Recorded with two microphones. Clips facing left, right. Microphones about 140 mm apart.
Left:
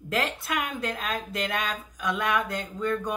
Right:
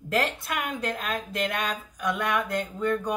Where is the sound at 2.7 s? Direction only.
5° right (ahead or behind).